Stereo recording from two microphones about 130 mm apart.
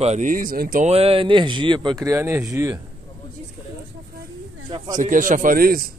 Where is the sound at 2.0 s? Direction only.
20° right (ahead or behind).